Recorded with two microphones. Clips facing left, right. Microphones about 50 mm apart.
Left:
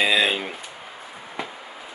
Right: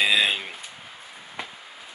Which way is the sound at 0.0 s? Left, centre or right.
Centre.